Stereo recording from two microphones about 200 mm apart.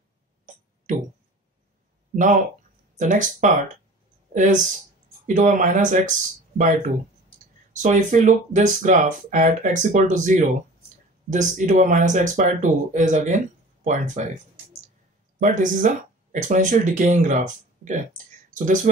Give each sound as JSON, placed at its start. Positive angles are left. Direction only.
{"t": 0.9, "sound": "speech", "side_deg": -40}
{"t": 2.1, "sound": "speech", "side_deg": -40}
{"t": 7.7, "sound": "speech", "side_deg": -40}
{"t": 15.4, "sound": "speech", "side_deg": -40}